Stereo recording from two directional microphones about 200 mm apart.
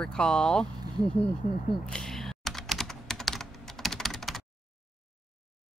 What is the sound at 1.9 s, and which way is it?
Computer keyboard, centre (ahead or behind).